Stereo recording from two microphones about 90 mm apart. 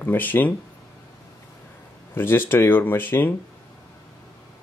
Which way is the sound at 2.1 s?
25° left (ahead or behind).